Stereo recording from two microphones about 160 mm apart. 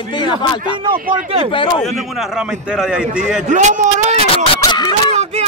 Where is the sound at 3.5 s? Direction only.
50° right (ahead or behind).